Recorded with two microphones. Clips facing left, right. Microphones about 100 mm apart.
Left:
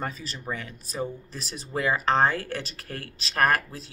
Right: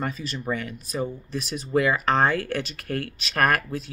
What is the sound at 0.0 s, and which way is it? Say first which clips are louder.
Speech: right 4 dB; 30° left (ahead or behind).